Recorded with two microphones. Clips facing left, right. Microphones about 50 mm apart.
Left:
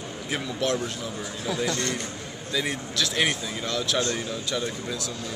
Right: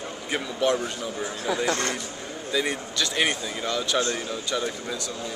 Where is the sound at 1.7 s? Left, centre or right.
Right.